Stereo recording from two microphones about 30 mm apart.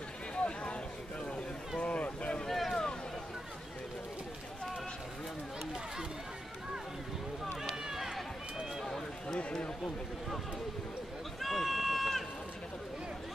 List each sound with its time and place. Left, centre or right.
1.8 s a sound: left
2.4 s boat: centre
2.7 s a sound: left
7.6 s run: centre
8.8 s run: centre
11.4 s run: centre